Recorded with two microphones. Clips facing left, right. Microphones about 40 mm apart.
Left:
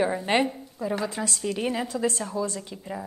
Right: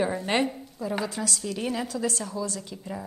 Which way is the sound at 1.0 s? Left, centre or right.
Left.